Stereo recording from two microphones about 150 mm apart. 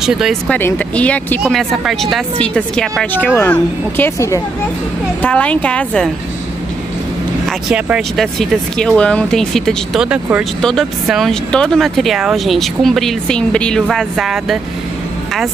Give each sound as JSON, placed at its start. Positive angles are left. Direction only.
{"t": 0.0, "sound": "speech", "side_deg": -5}
{"t": 0.5, "sound": "speech", "side_deg": 10}
{"t": 7.4, "sound": "speech", "side_deg": -5}
{"t": 10.0, "sound": "speech", "side_deg": -10}
{"t": 10.6, "sound": "speech", "side_deg": 0}